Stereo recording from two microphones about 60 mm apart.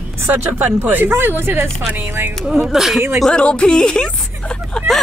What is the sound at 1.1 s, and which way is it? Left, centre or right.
A woman's voice, right.